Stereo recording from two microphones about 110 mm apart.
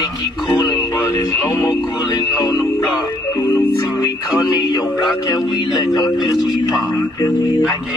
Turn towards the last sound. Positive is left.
turn(degrees=35)  # may be behind; listen again after turning